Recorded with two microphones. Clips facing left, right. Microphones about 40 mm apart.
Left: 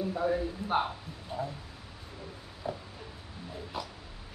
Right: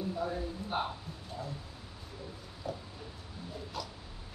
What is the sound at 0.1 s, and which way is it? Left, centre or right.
Speech, left.